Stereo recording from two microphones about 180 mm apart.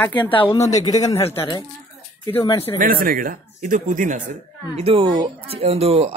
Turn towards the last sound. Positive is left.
turn(degrees=-35)  # may be behind; listen again after turning